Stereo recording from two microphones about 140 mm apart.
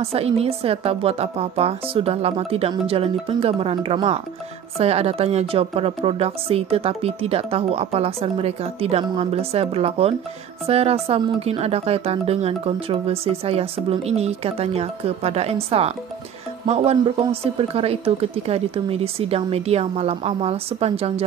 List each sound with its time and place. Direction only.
0.0 s a woman's voice: 45° right (ahead or behind)